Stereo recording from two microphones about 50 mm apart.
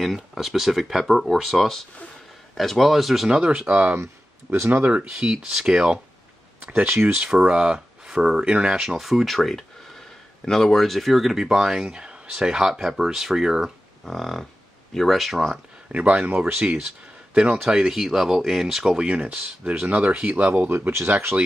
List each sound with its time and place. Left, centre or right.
0.0 s speech: centre
3.3 s speech: centre
4.5 s speech: right
5.1 s speech: centre
6.6 s speech: right
7.2 s speech: centre
14.0 s speech: centre
15.9 s speech: right; by 18.9 s centre
18.9 s speech: right
20.6 s speech: right